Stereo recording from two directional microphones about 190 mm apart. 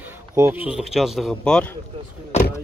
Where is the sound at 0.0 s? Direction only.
15° right (ahead or behind); by 1.8 s 5° left (ahead or behind).